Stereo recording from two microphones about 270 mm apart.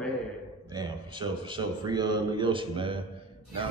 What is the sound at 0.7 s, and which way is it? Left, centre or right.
A man's voice, centre.